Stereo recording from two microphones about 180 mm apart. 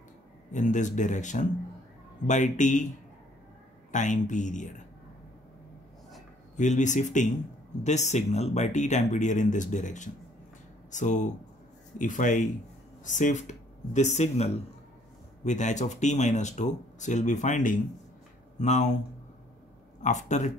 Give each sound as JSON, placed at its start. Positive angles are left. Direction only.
{"t": 0.5, "sound": "speech", "side_deg": 45}
{"t": 3.9, "sound": "speech", "side_deg": 45}
{"t": 6.5, "sound": "speech", "side_deg": 40}
{"t": 20.0, "sound": "speech", "side_deg": 40}